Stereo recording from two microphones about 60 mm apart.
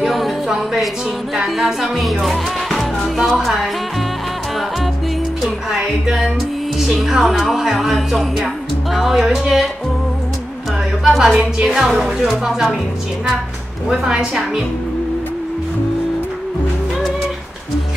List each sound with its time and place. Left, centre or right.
0.0 s music: centre
5.4 s a sound: centre
6.8 s speech: centre
11.1 s speech: centre
11.5 s a woman's voice: centre
11.9 s speech: centre
13.8 s a woman's voice: centre